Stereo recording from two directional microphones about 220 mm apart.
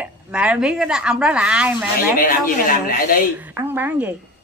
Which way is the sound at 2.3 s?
40° left (ahead or behind).